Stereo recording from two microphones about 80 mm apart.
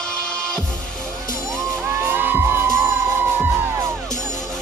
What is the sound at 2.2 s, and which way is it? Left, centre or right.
Music, right.